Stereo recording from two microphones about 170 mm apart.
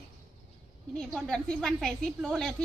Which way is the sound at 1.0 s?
5° left (ahead or behind).